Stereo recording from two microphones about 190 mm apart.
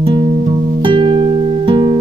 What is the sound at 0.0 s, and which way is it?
Music, 25° right (ahead or behind).